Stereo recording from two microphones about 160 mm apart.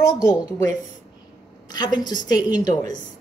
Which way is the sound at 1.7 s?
25° left (ahead or behind).